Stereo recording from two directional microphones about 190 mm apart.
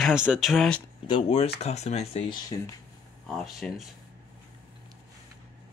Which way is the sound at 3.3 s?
Centre (ahead or behind).